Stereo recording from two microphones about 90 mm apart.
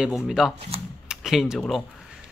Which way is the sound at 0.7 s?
90° right.